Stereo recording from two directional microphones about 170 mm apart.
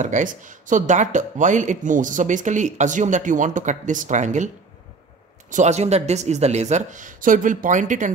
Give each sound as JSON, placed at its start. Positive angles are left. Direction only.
{"t": 0.0, "sound": "speech", "side_deg": -50}
{"t": 5.5, "sound": "speech", "side_deg": -45}